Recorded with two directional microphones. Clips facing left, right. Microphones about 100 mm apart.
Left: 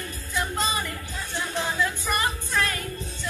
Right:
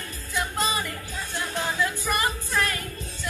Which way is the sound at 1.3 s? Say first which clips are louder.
Left 1 dB; 15° left (ahead or behind).